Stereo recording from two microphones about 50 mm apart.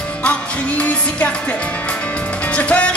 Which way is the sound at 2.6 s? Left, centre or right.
Left.